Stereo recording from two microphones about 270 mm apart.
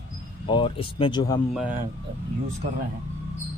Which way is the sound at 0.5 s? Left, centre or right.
Centre.